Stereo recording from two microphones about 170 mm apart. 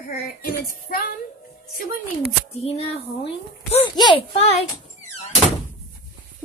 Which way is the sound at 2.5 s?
35° left (ahead or behind).